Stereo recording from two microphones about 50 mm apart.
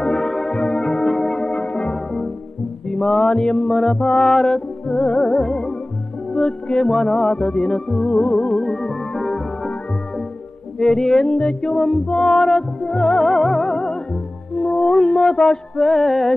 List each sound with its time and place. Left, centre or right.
0.0 s music: centre
1.4 s music: left
2.9 s mantra: centre
3.6 s music: centre
4.6 s music: centre
6.9 s music: centre
8.8 s organ: left
10.8 s music: centre
11.2 s music: left
11.6 s music: centre